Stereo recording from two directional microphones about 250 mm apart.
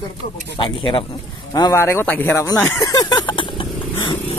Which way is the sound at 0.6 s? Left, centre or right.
Centre.